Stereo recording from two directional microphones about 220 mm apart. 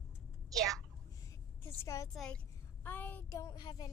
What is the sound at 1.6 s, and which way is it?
Speech, 15° left (ahead or behind).